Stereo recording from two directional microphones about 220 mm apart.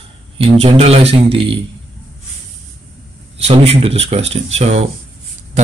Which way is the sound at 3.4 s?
25° right (ahead or behind).